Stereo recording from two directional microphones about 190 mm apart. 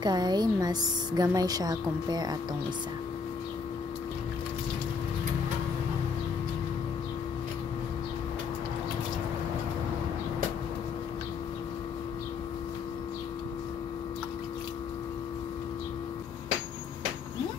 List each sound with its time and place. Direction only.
0.0 s a woman's voice: 20° right (ahead or behind)